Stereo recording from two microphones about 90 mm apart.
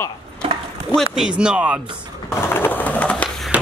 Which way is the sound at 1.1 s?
10° right (ahead or behind).